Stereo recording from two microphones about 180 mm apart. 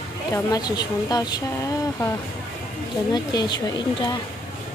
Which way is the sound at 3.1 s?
20° left (ahead or behind).